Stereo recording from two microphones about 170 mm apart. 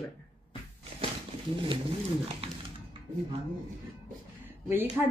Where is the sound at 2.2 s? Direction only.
35° right (ahead or behind).